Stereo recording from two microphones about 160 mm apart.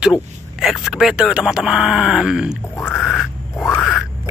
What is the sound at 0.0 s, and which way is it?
Speech, 5° right (ahead or behind).